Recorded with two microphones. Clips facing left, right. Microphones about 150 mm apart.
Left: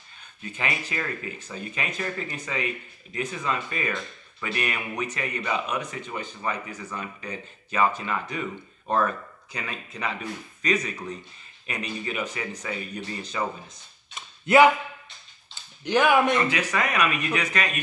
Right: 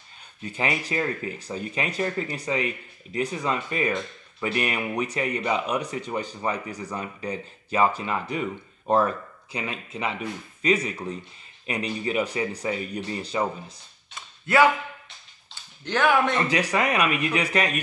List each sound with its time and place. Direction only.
0.4 s speech: 30° right (ahead or behind)
14.1 s a sound: 20° left (ahead or behind)
15.8 s speech: 15° left (ahead or behind)
16.3 s speech: 35° right (ahead or behind)